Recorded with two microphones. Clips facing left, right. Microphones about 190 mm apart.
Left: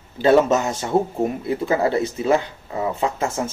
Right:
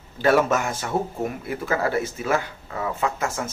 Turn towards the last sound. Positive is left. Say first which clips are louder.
# left 3 dB
turn(degrees=25)  # may be behind; listen again after turning